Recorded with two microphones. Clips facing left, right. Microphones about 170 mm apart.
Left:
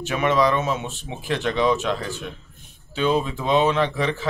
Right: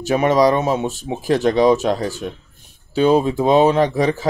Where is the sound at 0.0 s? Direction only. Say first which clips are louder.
Right 5 dB; 40° right (ahead or behind).